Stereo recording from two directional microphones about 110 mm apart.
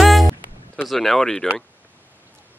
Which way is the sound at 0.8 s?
Centre (ahead or behind).